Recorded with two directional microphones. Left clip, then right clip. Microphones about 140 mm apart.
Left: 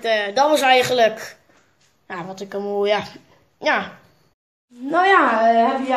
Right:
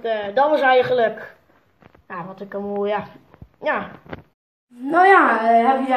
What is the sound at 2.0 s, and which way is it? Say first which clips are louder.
A woman's voice: left 2 dB; 75° left (ahead or behind).